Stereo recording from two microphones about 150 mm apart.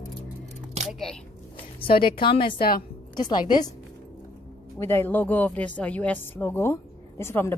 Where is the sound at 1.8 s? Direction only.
35° left (ahead or behind).